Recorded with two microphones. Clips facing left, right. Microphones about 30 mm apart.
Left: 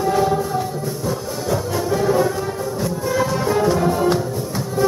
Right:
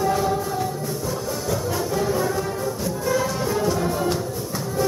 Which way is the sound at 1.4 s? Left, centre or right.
Centre.